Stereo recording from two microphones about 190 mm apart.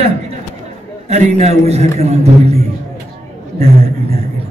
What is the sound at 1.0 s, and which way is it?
A man's voice, 35° right (ahead or behind).